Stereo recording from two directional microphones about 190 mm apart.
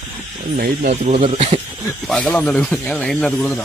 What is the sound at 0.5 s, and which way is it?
Speech, 45° right (ahead or behind).